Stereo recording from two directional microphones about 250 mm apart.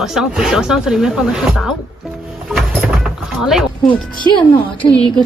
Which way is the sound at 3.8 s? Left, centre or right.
Centre.